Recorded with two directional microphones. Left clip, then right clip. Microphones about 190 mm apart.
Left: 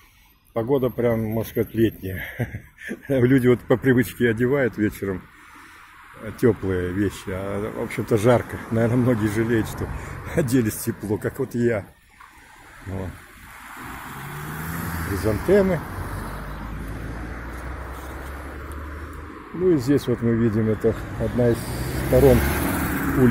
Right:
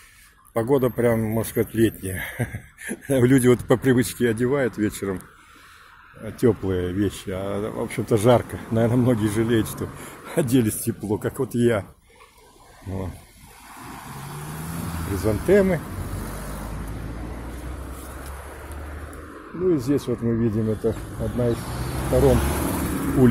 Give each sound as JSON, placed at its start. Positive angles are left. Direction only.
{"t": 0.6, "sound": "a man's voice", "side_deg": -15}
{"t": 6.2, "sound": "a man's voice", "side_deg": 0}
{"t": 14.4, "sound": "vehicle", "side_deg": -20}
{"t": 15.4, "sound": "speech", "side_deg": -10}
{"t": 15.8, "sound": "vehicle", "side_deg": -50}
{"t": 19.6, "sound": "speech", "side_deg": 15}
{"t": 21.1, "sound": "speech", "side_deg": 35}
{"t": 22.3, "sound": "vehicle", "side_deg": 30}
{"t": 22.8, "sound": "vehicle", "side_deg": -10}